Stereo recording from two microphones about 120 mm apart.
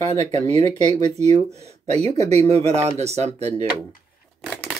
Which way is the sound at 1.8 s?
65° right (ahead or behind).